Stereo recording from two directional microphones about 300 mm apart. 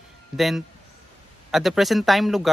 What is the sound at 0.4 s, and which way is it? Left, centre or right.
Speech, centre.